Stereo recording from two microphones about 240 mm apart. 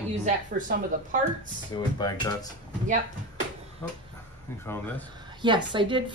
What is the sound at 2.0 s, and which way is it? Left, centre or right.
Speech, centre.